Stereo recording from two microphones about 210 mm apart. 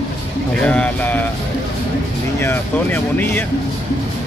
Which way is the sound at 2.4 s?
10° left (ahead or behind).